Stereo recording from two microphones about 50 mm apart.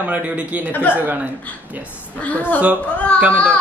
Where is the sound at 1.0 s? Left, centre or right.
Right.